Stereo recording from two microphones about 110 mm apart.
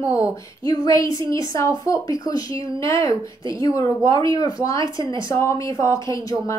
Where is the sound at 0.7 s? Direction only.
35° left (ahead or behind).